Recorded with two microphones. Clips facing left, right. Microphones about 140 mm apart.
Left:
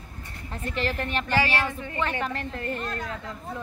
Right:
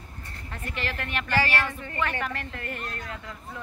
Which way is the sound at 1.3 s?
15° left (ahead or behind).